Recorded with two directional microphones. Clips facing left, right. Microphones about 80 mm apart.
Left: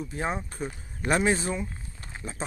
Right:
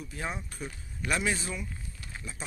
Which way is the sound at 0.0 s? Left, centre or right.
Left.